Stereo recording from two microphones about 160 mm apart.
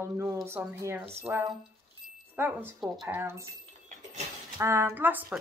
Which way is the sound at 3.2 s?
15° right (ahead or behind).